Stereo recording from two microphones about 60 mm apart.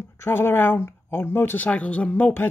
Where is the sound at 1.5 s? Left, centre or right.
Left.